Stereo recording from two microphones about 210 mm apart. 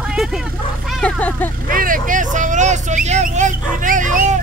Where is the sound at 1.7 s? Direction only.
40° right (ahead or behind).